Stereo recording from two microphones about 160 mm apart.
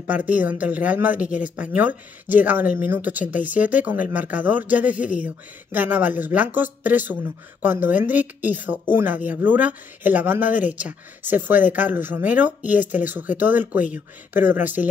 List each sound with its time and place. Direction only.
0.0 s speech: 10° right (ahead or behind)